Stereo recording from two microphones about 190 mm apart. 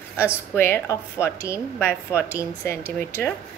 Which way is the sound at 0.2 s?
10° left (ahead or behind).